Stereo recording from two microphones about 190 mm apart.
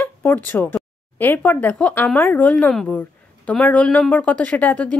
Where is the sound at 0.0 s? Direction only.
10° left (ahead or behind).